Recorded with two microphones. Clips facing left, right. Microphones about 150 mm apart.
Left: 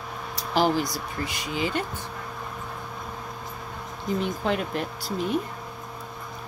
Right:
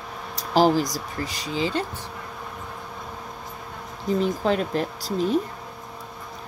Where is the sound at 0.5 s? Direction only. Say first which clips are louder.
Right 4 dB; 35° right (ahead or behind).